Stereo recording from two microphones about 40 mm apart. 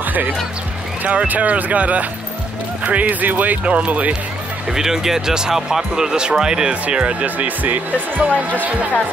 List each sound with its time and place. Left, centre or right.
0.0 s music: right
1.0 s speech: right
3.6 s speech: right
4.6 s speech: centre
6.7 s speech: right
7.2 s speech: right